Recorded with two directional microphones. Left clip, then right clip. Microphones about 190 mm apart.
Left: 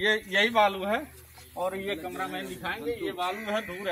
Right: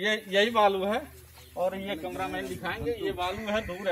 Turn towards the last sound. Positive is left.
turn(degrees=-10)  # may be behind; listen again after turning